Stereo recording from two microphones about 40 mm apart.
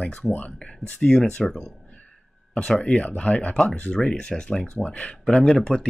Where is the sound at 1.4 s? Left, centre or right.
Centre.